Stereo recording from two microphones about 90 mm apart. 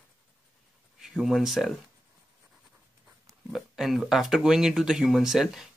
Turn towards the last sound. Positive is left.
turn(degrees=-5)  # may be behind; listen again after turning